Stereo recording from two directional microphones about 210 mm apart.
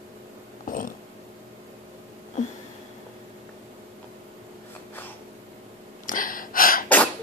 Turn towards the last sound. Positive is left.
turn(degrees=40)  # may be behind; listen again after turning